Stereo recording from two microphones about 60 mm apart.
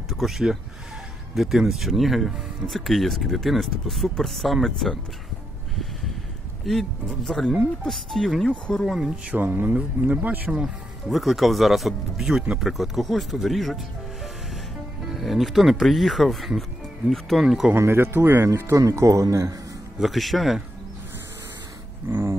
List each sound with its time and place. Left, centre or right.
0.1 s speech: centre
6.6 s speech: centre
8.5 s speech: centre
8.8 s speech: centre
9.4 s speech: right
10.6 s speech: centre
15.0 s speech: centre
17.7 s speech: right
18.8 s speech: right
20.0 s speech: centre
22.1 s dog: right